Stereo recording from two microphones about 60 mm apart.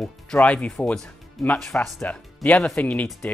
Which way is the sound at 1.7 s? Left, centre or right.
Left.